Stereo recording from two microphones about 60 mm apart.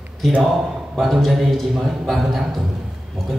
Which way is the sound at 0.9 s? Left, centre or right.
Centre.